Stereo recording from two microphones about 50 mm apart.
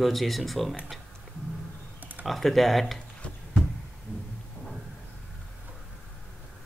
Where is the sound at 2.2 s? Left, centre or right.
Centre.